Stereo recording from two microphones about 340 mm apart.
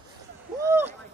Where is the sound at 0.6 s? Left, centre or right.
Centre.